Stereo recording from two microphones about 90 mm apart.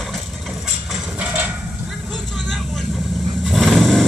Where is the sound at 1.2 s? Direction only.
15° right (ahead or behind).